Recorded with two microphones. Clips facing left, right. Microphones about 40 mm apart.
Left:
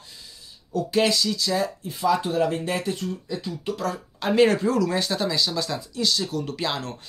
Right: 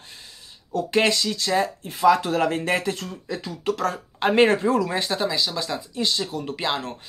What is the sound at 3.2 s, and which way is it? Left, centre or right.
Speech, right.